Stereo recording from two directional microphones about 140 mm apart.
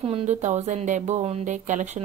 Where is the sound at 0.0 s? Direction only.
45° right (ahead or behind).